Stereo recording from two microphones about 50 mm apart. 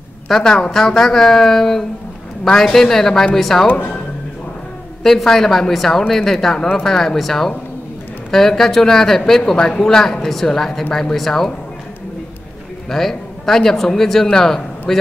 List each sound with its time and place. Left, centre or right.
0.3 s speech: centre
3.6 s speech: left
5.0 s speech: centre
12.9 s a man's voice: centre